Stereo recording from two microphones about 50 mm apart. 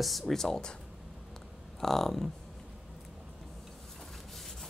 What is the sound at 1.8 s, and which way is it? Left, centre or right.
Speech, centre.